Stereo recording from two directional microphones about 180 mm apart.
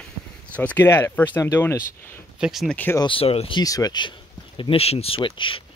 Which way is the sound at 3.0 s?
30° left (ahead or behind).